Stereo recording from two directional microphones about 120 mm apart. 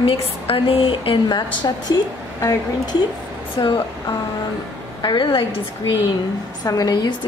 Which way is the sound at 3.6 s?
45° left (ahead or behind).